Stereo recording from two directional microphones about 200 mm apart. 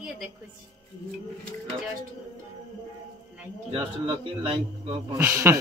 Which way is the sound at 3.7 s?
25° right (ahead or behind).